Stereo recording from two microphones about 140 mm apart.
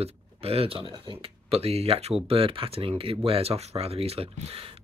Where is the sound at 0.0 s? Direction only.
45° right (ahead or behind).